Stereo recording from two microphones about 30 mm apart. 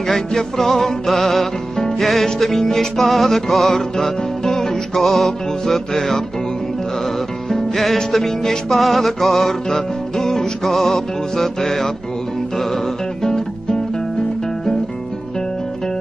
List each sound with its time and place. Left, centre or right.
0.0 s music: centre
2.6 s music: centre
3.0 s music: centre
7.4 s music: centre